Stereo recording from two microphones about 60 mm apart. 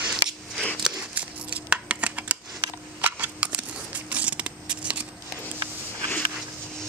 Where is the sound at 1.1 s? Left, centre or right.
Right.